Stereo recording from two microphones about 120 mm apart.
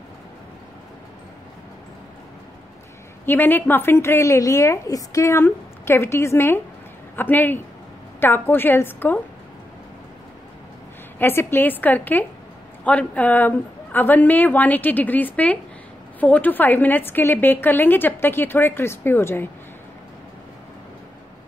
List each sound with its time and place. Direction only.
3.3 s a woman's voice: 15° left (ahead or behind)
11.1 s a woman's voice: 20° left (ahead or behind)